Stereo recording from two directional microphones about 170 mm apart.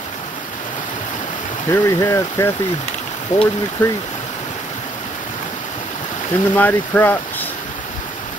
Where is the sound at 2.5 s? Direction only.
45° left (ahead or behind).